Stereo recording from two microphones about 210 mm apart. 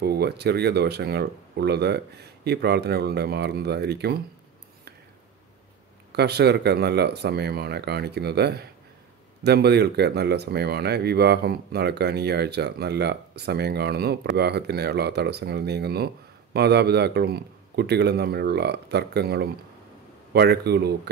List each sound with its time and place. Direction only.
0.0 s speech: 50° right (ahead or behind)
6.1 s speech: 50° right (ahead or behind)